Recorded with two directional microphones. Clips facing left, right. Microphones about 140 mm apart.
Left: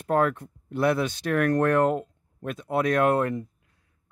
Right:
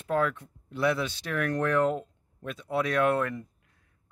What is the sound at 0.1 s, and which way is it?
Speech, 45° left (ahead or behind).